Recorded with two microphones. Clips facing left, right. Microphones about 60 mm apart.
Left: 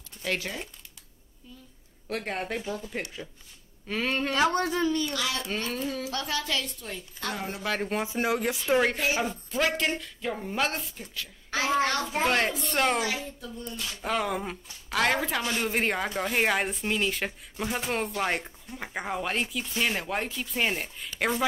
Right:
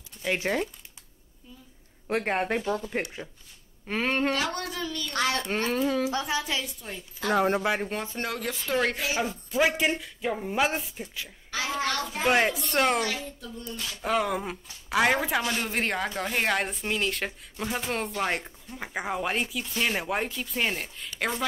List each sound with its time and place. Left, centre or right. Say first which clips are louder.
0.5 s speech: right 9 dB; right
2.0 s speech: right 5 dB; right
3.8 s speech: right 2 dB; right
4.4 s speech: left 6 dB; left
5.1 s speech: right 4 dB; right
5.7 s speech: right 6 dB; right
6.0 s a woman's voice: right 3 dB; centre
7.3 s speech: right 11 dB; right
8.0 s speech: left 5 dB; centre
9.2 s speech: even; centre
9.6 s a woman's voice: right 3 dB; centre
11.5 s a child's voice: left 3 dB; left
12.3 s a man's voice: right 7 dB; centre
14.0 s a man's voice: right 2 dB; centre